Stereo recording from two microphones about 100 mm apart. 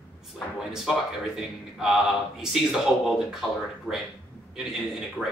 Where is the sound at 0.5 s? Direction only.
5° right (ahead or behind).